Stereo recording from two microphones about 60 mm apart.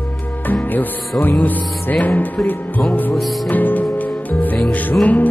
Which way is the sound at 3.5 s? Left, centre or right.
Left.